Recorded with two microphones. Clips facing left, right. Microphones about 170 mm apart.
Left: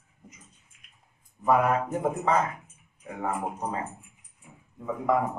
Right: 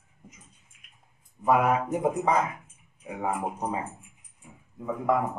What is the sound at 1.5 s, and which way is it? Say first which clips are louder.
Speech: even; 10° right (ahead or behind).